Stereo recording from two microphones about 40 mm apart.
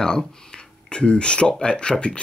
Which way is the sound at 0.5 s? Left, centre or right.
Left.